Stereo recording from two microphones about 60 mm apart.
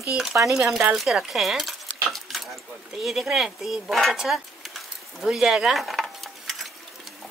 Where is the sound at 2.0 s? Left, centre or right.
Centre.